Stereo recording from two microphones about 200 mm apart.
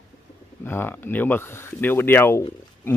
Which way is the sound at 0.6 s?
10° left (ahead or behind).